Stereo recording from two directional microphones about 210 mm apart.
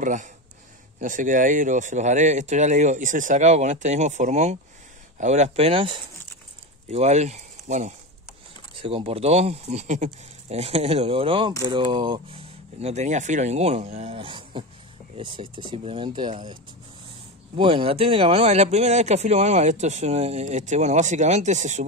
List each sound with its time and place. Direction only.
0.0 s speech: 35° right (ahead or behind); by 16.5 s 20° right (ahead or behind)
17.6 s speech: 25° right (ahead or behind)